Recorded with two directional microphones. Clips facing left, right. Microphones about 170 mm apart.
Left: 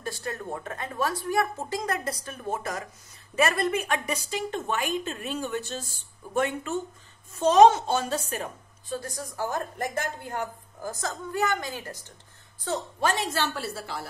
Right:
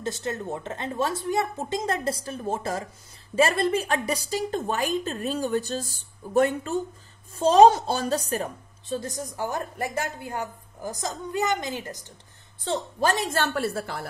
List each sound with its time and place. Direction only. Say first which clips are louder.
0.0 s a woman's voice: right 4 dB; 25° right (ahead or behind); by 8.5 s 40° right (ahead or behind)
8.8 s a woman's voice: right 3 dB; 20° right (ahead or behind)
12.6 s a woman's voice: right 2 dB; 35° right (ahead or behind); by 14.0 s 55° right (ahead or behind)